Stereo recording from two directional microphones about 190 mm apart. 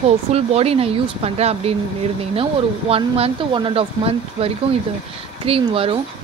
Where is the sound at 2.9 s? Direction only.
30° right (ahead or behind).